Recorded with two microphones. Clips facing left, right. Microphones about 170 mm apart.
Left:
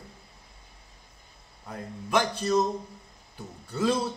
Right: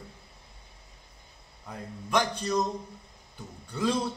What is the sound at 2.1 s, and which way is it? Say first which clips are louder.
Speech: left 2 dB; 5° left (ahead or behind).